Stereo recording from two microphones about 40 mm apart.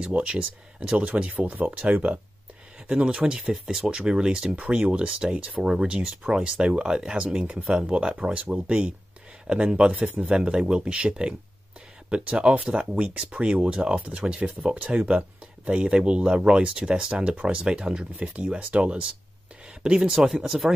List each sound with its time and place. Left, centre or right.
0.2 s speech: right
18.1 s speech: right
19.8 s speech: centre
20.2 s speech: centre